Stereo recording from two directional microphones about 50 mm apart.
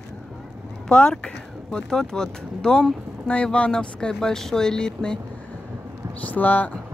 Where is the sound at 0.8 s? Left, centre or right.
Left.